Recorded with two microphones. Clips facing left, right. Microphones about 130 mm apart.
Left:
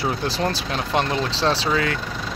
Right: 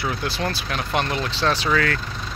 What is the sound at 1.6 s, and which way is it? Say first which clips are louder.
Speech: even; 20° left (ahead or behind).